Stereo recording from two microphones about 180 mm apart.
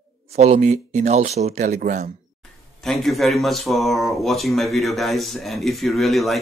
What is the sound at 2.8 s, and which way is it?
Speech, centre (ahead or behind).